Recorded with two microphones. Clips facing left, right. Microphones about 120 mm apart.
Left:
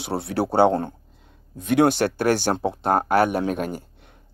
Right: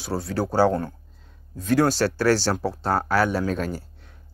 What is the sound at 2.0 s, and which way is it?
A man's voice, 20° left (ahead or behind).